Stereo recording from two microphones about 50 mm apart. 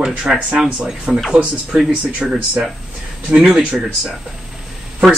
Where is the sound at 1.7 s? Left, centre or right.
Right.